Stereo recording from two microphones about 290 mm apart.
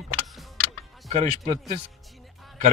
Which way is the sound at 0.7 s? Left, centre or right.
Left.